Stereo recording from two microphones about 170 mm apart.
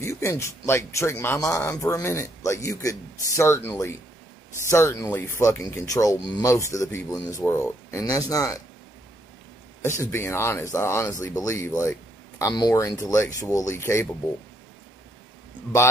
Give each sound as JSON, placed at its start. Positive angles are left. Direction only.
{"t": 0.0, "sound": "speech", "side_deg": 15}
{"t": 9.8, "sound": "speech", "side_deg": 15}